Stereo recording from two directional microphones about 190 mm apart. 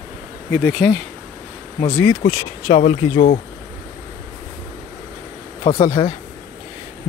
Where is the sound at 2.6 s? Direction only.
35° left (ahead or behind).